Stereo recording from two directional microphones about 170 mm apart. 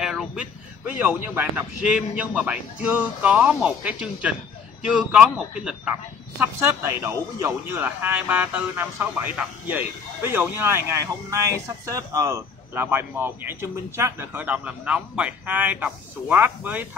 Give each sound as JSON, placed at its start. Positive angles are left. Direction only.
{"t": 0.0, "sound": "a man's voice", "side_deg": -5}